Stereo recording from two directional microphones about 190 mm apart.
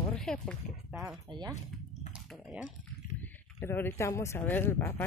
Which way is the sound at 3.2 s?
10° left (ahead or behind).